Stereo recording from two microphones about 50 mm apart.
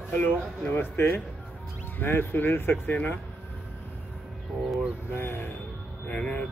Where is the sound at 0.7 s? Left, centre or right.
Left.